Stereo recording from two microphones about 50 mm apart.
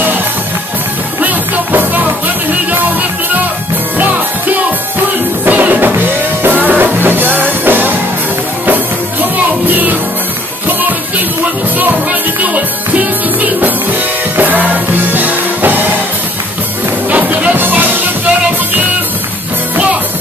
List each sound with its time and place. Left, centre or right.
1.2 s music: right
5.5 s music: right
9.7 s music: right
11.8 s music: right
14.3 s music: right
17.1 s music: right